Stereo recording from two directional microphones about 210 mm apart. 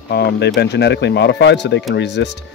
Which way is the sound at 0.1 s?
50° left (ahead or behind).